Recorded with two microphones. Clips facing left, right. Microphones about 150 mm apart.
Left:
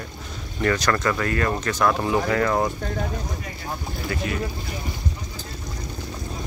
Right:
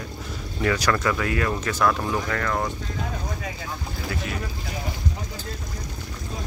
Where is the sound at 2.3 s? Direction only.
15° left (ahead or behind).